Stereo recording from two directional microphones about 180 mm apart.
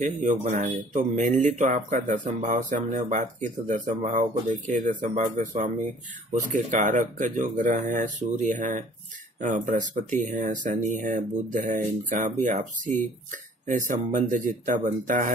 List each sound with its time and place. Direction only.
0.0 s speech: 45° right (ahead or behind)